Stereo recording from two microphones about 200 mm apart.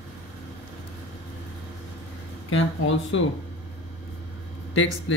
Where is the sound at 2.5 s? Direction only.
70° left (ahead or behind).